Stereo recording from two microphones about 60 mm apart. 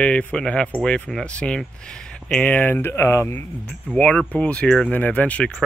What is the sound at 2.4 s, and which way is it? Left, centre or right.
Speech, left.